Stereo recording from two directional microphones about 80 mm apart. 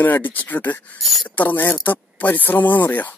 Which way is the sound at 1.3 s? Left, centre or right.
Left.